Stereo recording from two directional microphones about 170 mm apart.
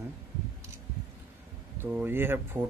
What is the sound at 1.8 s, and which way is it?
Speech, 10° right (ahead or behind).